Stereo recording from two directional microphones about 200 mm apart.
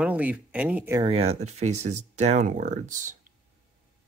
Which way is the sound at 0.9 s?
25° right (ahead or behind).